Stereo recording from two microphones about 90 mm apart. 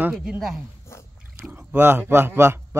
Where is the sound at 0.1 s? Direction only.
5° right (ahead or behind).